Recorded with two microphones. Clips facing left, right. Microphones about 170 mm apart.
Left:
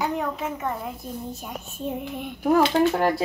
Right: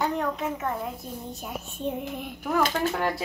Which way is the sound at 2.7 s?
35° left (ahead or behind).